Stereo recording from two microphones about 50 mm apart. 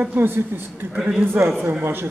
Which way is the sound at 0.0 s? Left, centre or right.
Right.